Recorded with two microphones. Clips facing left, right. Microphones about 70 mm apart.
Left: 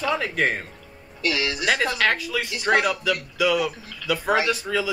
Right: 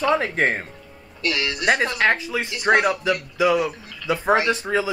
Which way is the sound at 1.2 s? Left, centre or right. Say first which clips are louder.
Even; centre.